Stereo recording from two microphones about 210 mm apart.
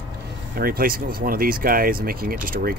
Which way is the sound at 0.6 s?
45° right (ahead or behind).